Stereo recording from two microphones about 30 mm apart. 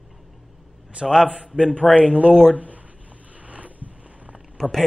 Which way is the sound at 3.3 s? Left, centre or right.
Right.